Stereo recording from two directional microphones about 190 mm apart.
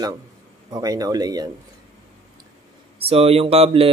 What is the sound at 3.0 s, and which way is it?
Speech, 30° right (ahead or behind).